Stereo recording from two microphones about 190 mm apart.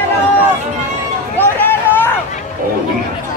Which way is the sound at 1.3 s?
10° left (ahead or behind).